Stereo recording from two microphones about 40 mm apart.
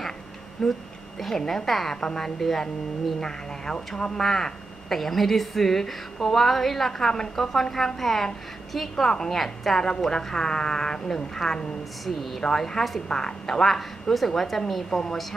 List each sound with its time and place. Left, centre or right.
0.6 s a woman's voice: centre